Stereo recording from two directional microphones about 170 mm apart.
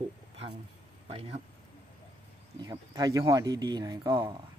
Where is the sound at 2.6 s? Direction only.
20° right (ahead or behind).